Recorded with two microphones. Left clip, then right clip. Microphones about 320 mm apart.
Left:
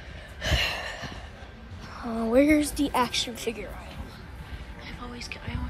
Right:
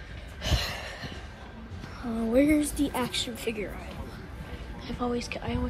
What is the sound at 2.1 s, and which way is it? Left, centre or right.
A woman's voice, left.